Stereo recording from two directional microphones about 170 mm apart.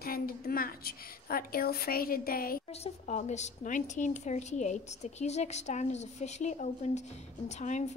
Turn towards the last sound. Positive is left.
turn(degrees=45)  # may be behind; listen again after turning